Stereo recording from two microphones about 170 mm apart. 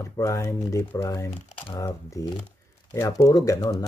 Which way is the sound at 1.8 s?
20° left (ahead or behind).